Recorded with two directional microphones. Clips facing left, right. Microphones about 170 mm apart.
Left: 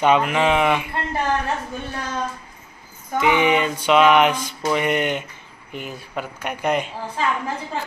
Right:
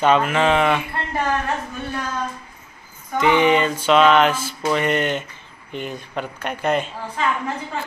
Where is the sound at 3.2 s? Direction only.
10° left (ahead or behind).